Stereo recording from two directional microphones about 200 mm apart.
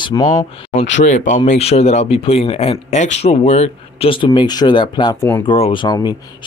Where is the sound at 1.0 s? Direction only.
40° left (ahead or behind).